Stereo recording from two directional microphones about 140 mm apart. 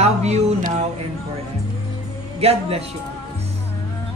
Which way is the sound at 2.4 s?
45° right (ahead or behind).